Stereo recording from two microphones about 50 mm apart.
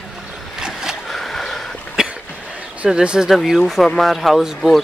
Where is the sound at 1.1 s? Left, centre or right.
Centre.